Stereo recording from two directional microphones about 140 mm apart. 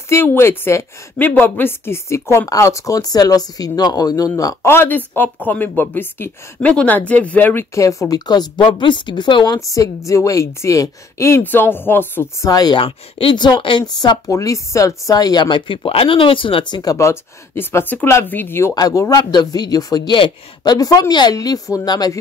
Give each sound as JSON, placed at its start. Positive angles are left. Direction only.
{"t": 0.1, "sound": "a woman's voice", "side_deg": 15}
{"t": 9.6, "sound": "a woman's voice", "side_deg": 25}
{"t": 16.8, "sound": "speech", "side_deg": 20}
{"t": 18.8, "sound": "a woman's voice", "side_deg": 25}